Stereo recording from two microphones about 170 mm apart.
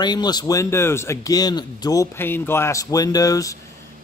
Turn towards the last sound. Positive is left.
turn(degrees=20)  # may be behind; listen again after turning